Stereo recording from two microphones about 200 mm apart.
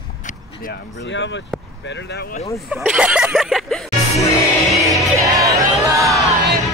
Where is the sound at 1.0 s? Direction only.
65° left (ahead or behind).